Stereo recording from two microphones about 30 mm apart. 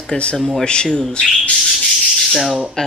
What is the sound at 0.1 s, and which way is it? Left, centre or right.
Speech, left.